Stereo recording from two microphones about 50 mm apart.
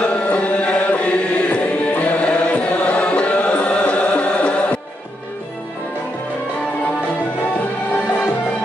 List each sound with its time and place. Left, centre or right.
0.0 s music: left